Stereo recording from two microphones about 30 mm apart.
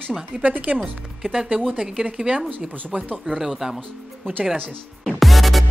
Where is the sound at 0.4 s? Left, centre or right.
Right.